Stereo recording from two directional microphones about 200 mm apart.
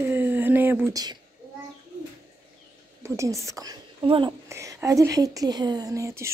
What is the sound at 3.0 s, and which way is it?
A woman's voice, 15° right (ahead or behind).